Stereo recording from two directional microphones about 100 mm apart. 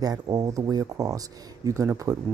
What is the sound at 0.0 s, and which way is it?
Speech, 40° right (ahead or behind).